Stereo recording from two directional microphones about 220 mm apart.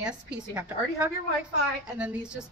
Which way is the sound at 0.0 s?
5° right (ahead or behind).